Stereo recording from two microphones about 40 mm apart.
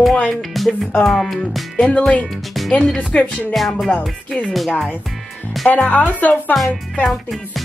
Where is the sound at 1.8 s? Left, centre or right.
Left.